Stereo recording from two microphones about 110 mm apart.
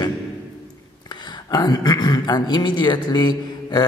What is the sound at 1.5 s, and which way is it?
Speech, 40° left (ahead or behind).